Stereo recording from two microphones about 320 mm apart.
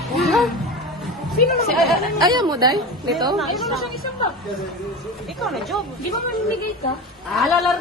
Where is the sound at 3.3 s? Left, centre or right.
Centre.